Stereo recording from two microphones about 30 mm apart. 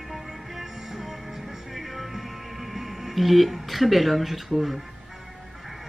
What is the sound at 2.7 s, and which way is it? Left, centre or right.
Speech, centre.